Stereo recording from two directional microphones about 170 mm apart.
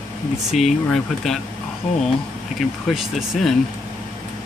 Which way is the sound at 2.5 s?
Centre (ahead or behind).